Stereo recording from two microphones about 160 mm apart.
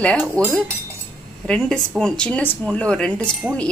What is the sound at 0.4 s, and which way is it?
A woman's voice, 5° left (ahead or behind).